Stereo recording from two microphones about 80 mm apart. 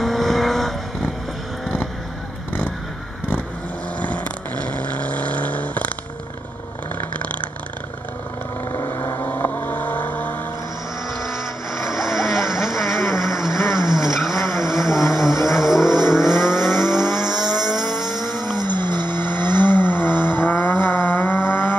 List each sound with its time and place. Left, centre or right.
0.0 s vehicle: centre
4.0 s vehicle: centre
8.7 s vehicle: left
9.2 s vehicle: left
11.1 s vehicle: centre
18.6 s vehicle: right
19.3 s vehicle: left